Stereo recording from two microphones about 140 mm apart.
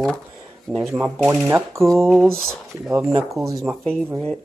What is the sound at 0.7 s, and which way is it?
Speech, 5° right (ahead or behind).